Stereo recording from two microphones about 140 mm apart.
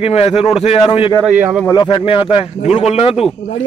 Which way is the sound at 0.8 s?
35° left (ahead or behind).